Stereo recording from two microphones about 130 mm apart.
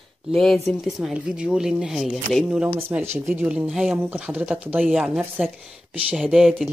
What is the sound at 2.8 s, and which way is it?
Speech, 15° right (ahead or behind).